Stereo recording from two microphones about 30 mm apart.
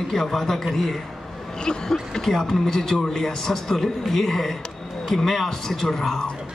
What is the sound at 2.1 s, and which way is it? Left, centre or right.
A man's voice, centre.